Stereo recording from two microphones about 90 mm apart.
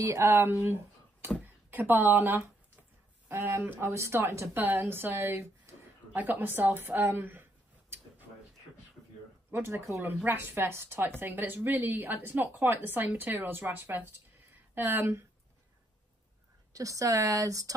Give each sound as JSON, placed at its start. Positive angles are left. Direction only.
{"t": 0.0, "sound": "a woman's voice", "side_deg": -30}
{"t": 6.1, "sound": "a woman's voice", "side_deg": -20}
{"t": 9.5, "sound": "a woman's voice", "side_deg": -25}
{"t": 16.7, "sound": "speech", "side_deg": -40}